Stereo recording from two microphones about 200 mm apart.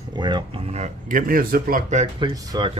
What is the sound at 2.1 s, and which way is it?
Speech, 20° right (ahead or behind).